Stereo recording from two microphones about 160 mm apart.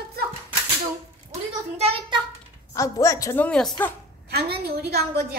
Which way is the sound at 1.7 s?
40° right (ahead or behind).